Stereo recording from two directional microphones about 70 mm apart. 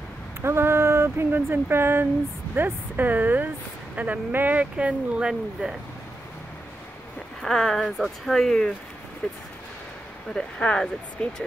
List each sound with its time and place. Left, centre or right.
0.4 s speech: right; by 5.7 s centre
7.4 s speech: centre